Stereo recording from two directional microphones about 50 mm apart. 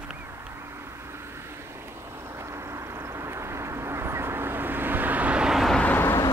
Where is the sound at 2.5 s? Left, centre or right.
Right.